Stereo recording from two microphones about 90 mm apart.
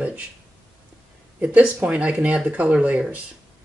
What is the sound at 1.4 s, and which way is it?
Speech, 15° right (ahead or behind).